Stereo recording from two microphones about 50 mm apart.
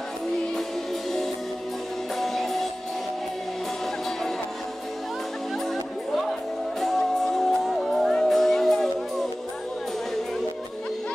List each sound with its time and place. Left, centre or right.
2.1 s music: centre
6.8 s music: centre